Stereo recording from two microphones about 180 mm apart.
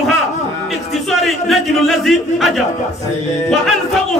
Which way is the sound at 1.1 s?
Centre (ahead or behind).